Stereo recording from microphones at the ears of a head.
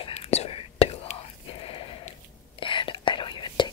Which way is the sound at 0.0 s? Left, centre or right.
Left.